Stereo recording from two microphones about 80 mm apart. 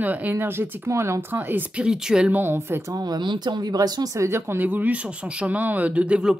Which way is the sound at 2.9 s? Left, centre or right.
Right.